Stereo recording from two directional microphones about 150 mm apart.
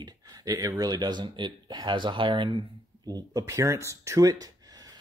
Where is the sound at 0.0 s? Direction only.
25° right (ahead or behind).